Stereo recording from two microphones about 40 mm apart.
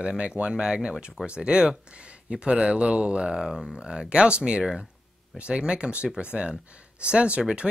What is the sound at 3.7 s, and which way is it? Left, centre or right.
Speech, right.